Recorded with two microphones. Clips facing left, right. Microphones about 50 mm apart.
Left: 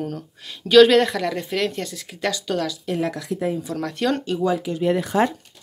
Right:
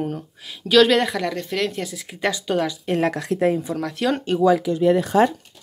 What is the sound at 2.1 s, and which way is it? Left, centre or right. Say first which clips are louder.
Speech: right 2 dB; centre.